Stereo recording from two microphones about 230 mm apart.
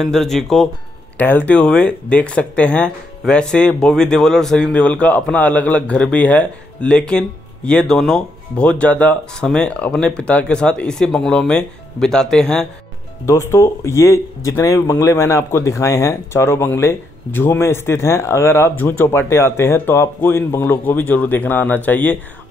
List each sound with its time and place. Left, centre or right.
0.0 s speech: centre